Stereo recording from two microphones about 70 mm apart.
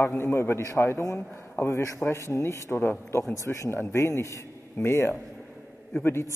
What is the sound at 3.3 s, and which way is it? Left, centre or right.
A man's voice, left.